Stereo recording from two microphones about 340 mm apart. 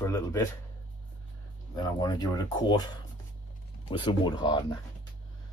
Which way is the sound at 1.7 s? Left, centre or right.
Centre.